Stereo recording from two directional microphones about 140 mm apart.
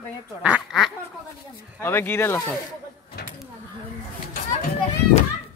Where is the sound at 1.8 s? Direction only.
15° left (ahead or behind).